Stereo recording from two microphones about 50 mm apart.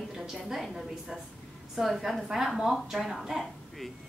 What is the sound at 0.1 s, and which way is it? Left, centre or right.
A woman's voice, centre.